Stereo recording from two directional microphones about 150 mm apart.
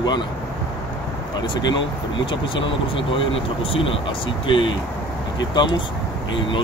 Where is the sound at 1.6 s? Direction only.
30° left (ahead or behind).